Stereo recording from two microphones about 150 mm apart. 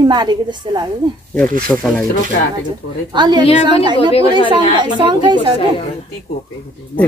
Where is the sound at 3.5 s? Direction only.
40° left (ahead or behind).